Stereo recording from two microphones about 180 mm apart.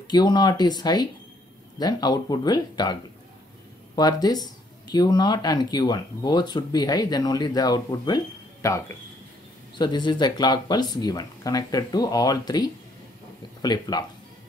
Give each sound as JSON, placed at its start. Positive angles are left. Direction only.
{"t": 0.1, "sound": "speech", "side_deg": 25}
{"t": 9.8, "sound": "speech", "side_deg": 25}